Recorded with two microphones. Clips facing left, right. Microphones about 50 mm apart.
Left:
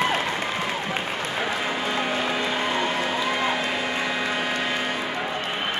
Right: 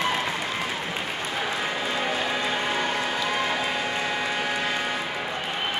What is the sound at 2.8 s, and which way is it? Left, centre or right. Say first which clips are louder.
Run: left 2 dB; left.